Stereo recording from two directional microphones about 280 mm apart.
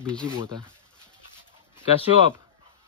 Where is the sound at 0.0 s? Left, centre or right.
Centre.